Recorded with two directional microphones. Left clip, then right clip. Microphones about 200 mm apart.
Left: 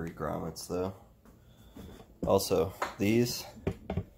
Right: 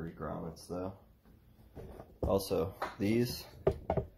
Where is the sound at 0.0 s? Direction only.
45° left (ahead or behind).